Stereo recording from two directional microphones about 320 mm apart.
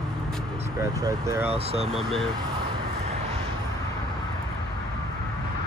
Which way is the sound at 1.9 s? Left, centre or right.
Centre.